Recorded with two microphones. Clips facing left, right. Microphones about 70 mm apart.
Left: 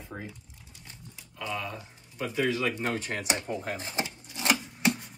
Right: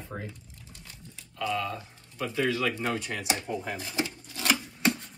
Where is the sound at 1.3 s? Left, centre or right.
Centre.